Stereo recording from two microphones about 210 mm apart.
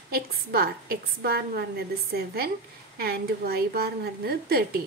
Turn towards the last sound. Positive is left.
turn(degrees=-45)  # may be behind; listen again after turning